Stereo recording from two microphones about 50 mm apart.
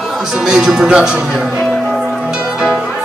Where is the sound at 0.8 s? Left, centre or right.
Centre.